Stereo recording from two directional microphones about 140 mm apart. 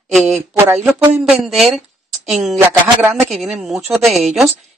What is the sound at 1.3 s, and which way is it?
Speech, centre (ahead or behind).